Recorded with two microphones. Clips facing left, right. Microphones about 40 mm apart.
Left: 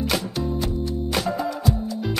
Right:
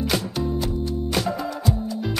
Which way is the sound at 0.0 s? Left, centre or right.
Centre.